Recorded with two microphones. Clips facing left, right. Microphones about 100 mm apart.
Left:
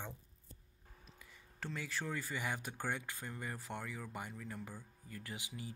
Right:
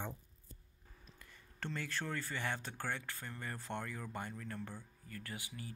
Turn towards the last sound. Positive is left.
turn(degrees=20)  # may be behind; listen again after turning